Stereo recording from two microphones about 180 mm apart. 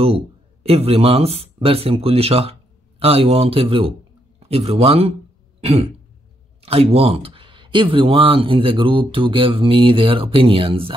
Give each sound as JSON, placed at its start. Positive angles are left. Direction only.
{"t": 0.7, "sound": "a man's voice", "side_deg": -35}
{"t": 5.6, "sound": "throat clearing", "side_deg": -35}
{"t": 6.6, "sound": "speech", "side_deg": -35}